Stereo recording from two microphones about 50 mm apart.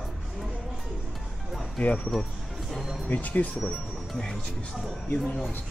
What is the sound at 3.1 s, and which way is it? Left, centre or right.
Speech, left.